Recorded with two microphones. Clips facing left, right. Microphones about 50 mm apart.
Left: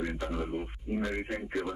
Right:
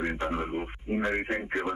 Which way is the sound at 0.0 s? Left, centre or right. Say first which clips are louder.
Right 4 dB; right.